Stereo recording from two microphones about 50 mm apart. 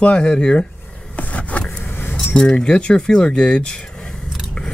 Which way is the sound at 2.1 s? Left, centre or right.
Centre.